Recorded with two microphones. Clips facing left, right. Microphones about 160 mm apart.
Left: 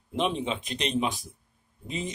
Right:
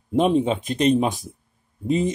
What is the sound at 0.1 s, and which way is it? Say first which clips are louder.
Speech: right 9 dB; 45° right (ahead or behind).